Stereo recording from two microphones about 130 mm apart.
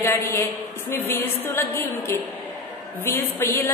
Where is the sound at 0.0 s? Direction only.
20° left (ahead or behind).